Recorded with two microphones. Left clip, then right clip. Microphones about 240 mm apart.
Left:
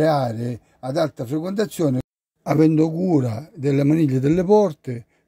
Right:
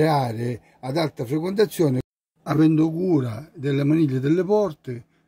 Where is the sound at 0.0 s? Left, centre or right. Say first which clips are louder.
Left 2 dB; left.